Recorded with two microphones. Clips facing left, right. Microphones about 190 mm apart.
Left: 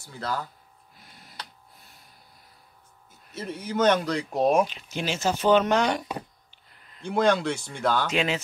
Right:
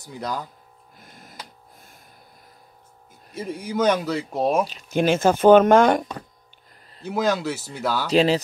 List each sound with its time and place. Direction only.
0.0 s speech: 15° right (ahead or behind)
0.9 s a sound: 50° right (ahead or behind)
3.3 s speech: 10° right (ahead or behind)
4.6 s speech: 45° right (ahead or behind)
7.0 s speech: 5° right (ahead or behind)
8.1 s speech: 35° right (ahead or behind)